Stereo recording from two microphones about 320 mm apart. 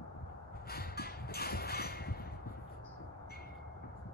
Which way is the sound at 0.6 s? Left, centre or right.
Left.